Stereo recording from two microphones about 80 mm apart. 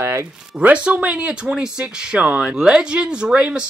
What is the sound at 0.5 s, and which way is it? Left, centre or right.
Speech, centre.